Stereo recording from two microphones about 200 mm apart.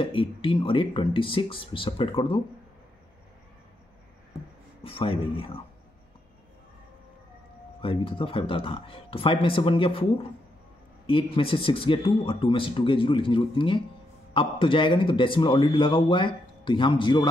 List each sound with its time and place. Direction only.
0.0 s a man's voice: 25° left (ahead or behind)
4.8 s a man's voice: 25° left (ahead or behind)
7.8 s a man's voice: 25° left (ahead or behind)